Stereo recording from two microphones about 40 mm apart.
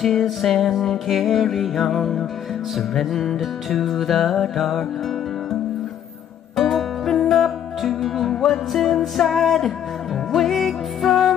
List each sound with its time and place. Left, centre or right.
0.0 s music: centre
6.5 s music: centre